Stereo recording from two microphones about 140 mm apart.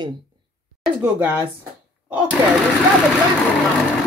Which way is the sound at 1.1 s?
15° right (ahead or behind).